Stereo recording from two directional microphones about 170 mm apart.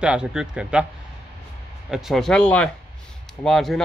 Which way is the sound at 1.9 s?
Centre (ahead or behind).